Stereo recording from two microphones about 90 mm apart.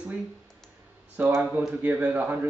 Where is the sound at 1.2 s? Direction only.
20° right (ahead or behind).